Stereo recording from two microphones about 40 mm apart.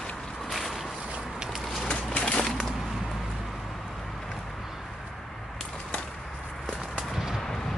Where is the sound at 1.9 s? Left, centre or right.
Left.